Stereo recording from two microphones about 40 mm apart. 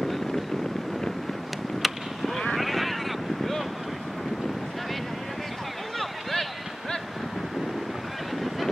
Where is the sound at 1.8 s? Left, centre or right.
Centre.